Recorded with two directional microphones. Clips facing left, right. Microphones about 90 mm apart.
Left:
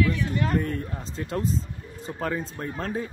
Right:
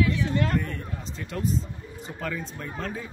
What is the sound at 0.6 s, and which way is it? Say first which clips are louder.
Speech: left 4 dB; 40° left (ahead or behind).